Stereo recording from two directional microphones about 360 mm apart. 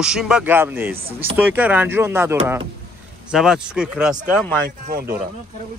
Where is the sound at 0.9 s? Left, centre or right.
Centre.